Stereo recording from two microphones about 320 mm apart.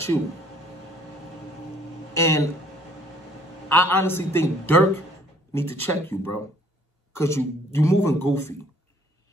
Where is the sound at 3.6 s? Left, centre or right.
Centre.